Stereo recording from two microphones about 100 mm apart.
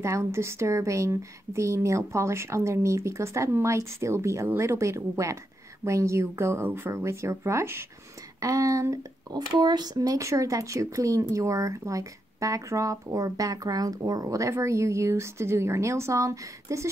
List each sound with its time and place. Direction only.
0.0 s a woman's voice: 25° right (ahead or behind)